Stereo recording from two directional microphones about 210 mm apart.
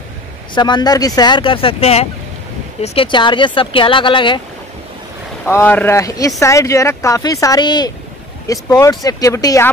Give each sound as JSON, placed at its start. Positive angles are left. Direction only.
{"t": 0.6, "sound": "speech", "side_deg": 20}
{"t": 5.4, "sound": "speech", "side_deg": 10}